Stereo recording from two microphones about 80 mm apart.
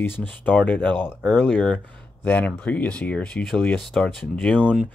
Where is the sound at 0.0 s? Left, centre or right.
Left.